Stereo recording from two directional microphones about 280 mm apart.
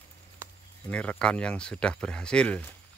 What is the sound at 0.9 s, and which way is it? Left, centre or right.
Speech, centre.